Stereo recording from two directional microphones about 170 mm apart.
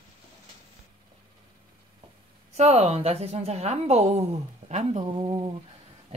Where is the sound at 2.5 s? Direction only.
40° right (ahead or behind).